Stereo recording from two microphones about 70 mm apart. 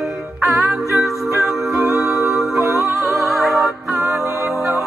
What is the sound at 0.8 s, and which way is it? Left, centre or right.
Music, centre.